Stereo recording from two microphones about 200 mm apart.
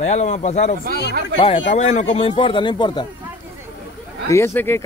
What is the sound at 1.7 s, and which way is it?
Speech, 35° left (ahead or behind).